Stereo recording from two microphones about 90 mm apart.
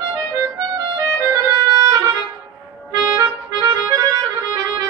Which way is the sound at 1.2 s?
35° right (ahead or behind).